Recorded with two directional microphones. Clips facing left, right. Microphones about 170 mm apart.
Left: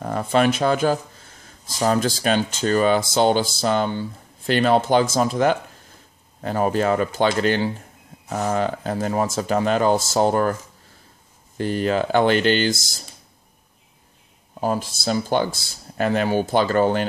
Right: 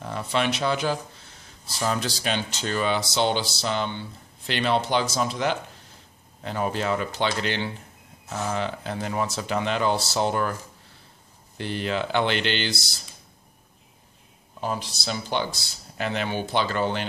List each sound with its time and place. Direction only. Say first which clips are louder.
0.0 s speech: left 7 dB; 45° left (ahead or behind)
11.5 s speech: left 7 dB; 45° left (ahead or behind)
14.6 s speech: left 6 dB; 45° left (ahead or behind)